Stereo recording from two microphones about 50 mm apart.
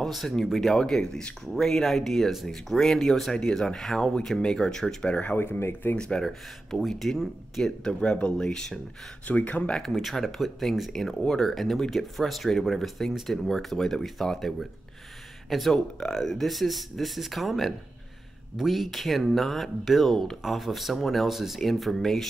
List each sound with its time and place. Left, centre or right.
0.0 s speech: centre
5.1 s speech: left
5.9 s speech: centre
7.8 s speech: centre
9.3 s speech: left
9.8 s speech: centre